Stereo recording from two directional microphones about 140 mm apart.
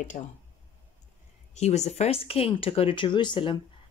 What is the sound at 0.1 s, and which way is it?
Speech, 55° left (ahead or behind).